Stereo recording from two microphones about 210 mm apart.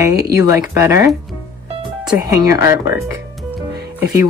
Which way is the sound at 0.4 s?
15° right (ahead or behind).